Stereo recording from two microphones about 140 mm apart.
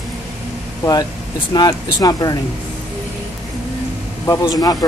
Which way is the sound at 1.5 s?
30° left (ahead or behind).